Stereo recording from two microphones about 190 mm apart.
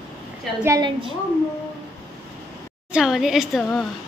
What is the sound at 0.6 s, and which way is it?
Speech, 15° right (ahead or behind).